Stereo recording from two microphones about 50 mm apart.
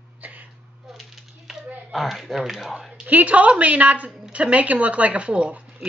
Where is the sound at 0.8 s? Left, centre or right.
Centre.